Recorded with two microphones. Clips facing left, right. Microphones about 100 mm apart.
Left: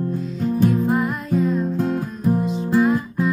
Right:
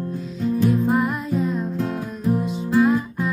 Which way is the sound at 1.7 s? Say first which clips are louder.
Left 3 dB; 35° left (ahead or behind).